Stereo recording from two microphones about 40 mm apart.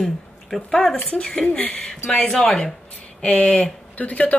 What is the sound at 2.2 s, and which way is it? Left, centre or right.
Speech, centre.